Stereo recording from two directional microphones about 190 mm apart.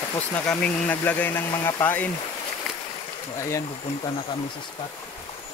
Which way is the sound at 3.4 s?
15° left (ahead or behind).